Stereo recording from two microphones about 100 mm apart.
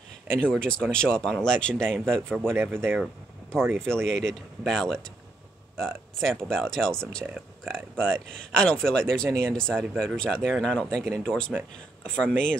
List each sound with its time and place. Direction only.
0.3 s speech: 10° left (ahead or behind)
2.5 s speech: 25° right (ahead or behind)
3.9 s speech: 5° left (ahead or behind)